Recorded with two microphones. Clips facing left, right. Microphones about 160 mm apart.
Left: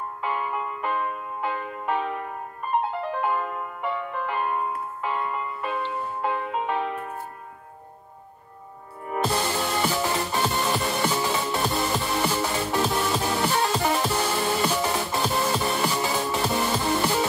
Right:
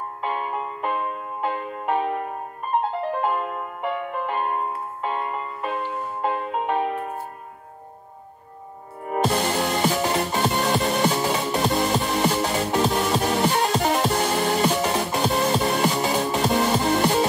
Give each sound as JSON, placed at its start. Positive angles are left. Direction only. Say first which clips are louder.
{"t": 0.4, "sound": "music", "louder": "right 1 dB", "side_deg": -25}
{"t": 3.2, "sound": "music", "louder": "right 2 dB", "side_deg": -20}
{"t": 4.4, "sound": "music", "louder": "right 1 dB", "side_deg": -35}
{"t": 5.6, "sound": "music", "louder": "right 3 dB", "side_deg": -10}
{"t": 6.8, "sound": "music", "louder": "right 4 dB", "side_deg": -40}
{"t": 9.0, "sound": "music", "louder": "right 3 dB", "side_deg": -20}